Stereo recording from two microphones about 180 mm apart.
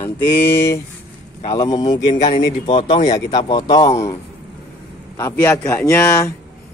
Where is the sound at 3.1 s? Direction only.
20° left (ahead or behind).